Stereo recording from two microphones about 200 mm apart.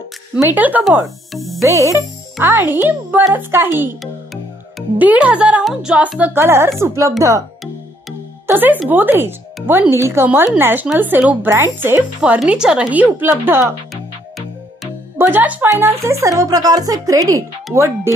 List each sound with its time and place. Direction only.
0.4 s speech: 10° right (ahead or behind)
1.6 s speech: 15° right (ahead or behind)
8.5 s speech: 10° right (ahead or behind)
15.1 s speech: 10° right (ahead or behind)